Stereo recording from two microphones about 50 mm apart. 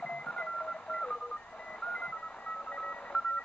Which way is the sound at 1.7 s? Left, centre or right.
Centre.